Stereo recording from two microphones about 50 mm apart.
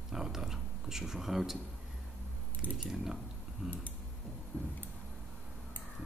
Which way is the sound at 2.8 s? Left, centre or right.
Centre.